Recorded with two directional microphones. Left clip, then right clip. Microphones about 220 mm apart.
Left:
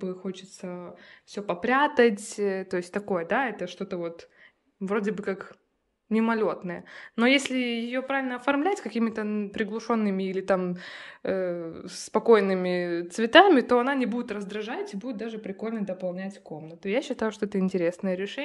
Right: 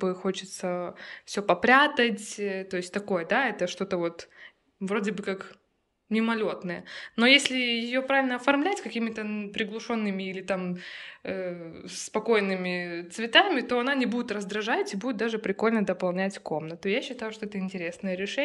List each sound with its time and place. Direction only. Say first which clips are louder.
0.0 s speech: right 6 dB; 5° left (ahead or behind)
2.0 s speech: left 4 dB; 25° left (ahead or behind); by 4.1 s 5° left (ahead or behind)
4.8 s speech: left 1 dB; 15° left (ahead or behind); by 13.7 s 30° left (ahead or behind)
13.7 s speech: left 2 dB; 15° left (ahead or behind)
17.0 s speech: left 5 dB; 30° left (ahead or behind); by 18.4 s 15° left (ahead or behind)